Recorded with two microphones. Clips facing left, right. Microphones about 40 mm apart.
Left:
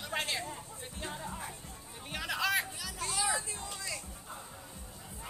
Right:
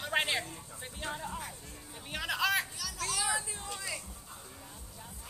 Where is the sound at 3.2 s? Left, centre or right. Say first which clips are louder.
Left 1 dB; centre.